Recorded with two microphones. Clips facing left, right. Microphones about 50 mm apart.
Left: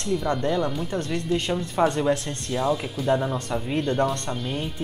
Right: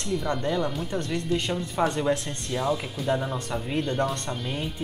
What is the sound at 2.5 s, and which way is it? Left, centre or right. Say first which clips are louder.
A man's voice: left 2 dB; centre.